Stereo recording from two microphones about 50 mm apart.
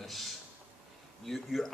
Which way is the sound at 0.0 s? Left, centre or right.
Centre.